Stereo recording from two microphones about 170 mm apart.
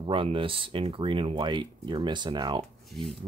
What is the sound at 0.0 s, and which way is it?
Speech, 30° right (ahead or behind).